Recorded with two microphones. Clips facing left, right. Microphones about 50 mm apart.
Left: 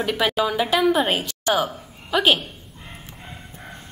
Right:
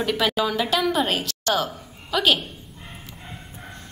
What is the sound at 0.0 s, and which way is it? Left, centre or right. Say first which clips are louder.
A woman's voice: left 1 dB; centre.